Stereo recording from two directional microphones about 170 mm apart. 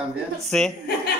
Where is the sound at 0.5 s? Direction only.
5° left (ahead or behind).